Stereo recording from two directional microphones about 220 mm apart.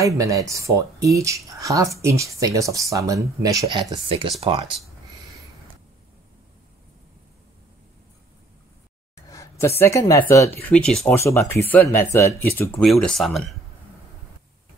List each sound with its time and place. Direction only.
0.0 s speech: 15° right (ahead or behind)
9.1 s speech: 15° left (ahead or behind)